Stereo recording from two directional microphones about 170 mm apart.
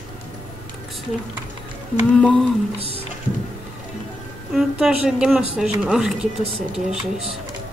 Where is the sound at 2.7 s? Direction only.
35° right (ahead or behind).